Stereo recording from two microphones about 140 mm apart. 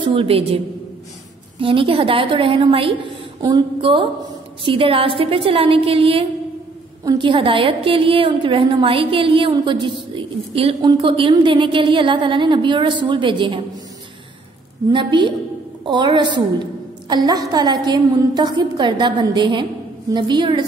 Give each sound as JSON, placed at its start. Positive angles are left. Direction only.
{"t": 0.0, "sound": "a woman's voice", "side_deg": -40}
{"t": 1.6, "sound": "a woman's voice", "side_deg": -40}
{"t": 14.9, "sound": "a woman's voice", "side_deg": -35}